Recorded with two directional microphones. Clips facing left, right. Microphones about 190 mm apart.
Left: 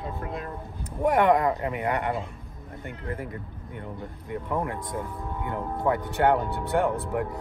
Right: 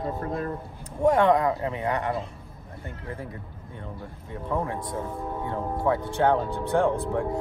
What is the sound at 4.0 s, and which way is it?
Speech, 10° left (ahead or behind).